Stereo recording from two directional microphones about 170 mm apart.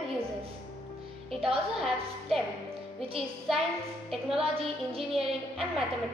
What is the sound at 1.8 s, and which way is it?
Child singing, centre (ahead or behind).